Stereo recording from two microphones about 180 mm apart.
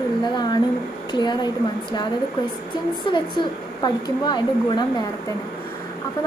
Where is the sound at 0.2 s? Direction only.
25° left (ahead or behind).